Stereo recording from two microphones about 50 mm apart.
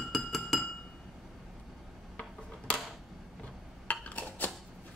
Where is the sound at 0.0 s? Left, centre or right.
Centre.